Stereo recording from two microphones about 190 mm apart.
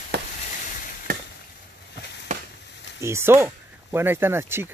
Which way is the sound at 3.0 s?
15° right (ahead or behind).